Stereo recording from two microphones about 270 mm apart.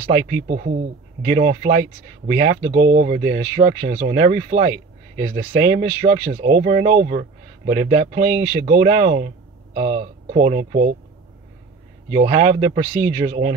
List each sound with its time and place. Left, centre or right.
0.0 s speech: right
12.1 s speech: right